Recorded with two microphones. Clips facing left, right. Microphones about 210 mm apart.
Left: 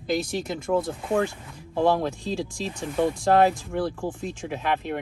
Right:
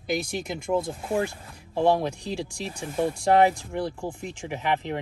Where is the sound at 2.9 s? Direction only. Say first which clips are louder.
Left 1 dB; 20° right (ahead or behind).